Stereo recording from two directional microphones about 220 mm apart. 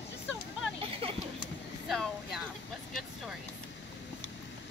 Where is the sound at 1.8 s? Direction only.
Centre (ahead or behind).